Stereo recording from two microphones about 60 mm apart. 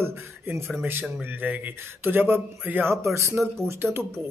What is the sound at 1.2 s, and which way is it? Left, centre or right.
Speech, right.